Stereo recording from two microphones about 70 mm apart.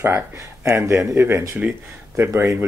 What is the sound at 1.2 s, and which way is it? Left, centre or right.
Speech, right.